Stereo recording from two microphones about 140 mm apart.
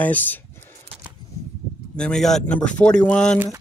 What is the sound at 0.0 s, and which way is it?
Speech, 10° left (ahead or behind).